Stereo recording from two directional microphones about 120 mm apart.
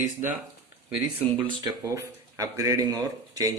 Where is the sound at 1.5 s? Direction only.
35° right (ahead or behind).